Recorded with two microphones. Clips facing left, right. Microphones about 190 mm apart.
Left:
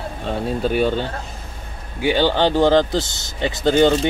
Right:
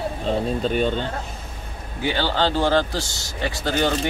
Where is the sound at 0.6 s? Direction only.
5° left (ahead or behind).